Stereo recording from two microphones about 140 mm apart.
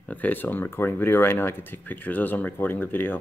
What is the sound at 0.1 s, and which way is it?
Speech, 10° left (ahead or behind).